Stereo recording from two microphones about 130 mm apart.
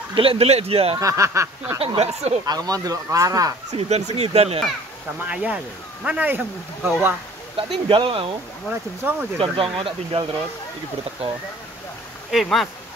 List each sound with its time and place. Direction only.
0.1 s speech: 45° right (ahead or behind)
0.9 s speech: 25° right (ahead or behind)
1.8 s speech: 55° right (ahead or behind)
2.4 s speech: 30° right (ahead or behind)
3.7 s speech: 55° right (ahead or behind)
5.2 s speech: 10° right (ahead or behind)
7.5 s speech: 45° right (ahead or behind)
8.6 s speech: 10° right (ahead or behind)
9.4 s speech: 45° right (ahead or behind)
12.3 s speech: centre (ahead or behind)